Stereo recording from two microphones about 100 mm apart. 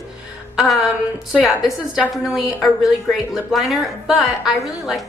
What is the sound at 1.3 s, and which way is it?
A woman's voice, 5° right (ahead or behind).